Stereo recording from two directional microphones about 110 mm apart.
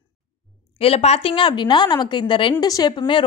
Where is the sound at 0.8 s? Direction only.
65° left (ahead or behind); by 2.5 s 45° left (ahead or behind).